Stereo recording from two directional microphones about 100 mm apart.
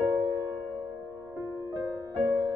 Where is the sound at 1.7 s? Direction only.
40° right (ahead or behind).